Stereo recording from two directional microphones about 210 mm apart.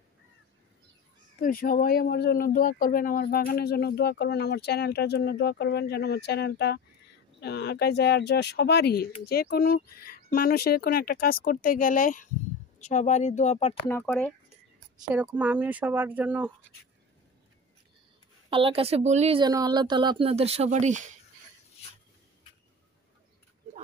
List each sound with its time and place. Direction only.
1.4 s speech: 45° left (ahead or behind)
13.8 s speech: 10° left (ahead or behind)
15.0 s speech: 5° right (ahead or behind)
18.5 s speech: 25° right (ahead or behind)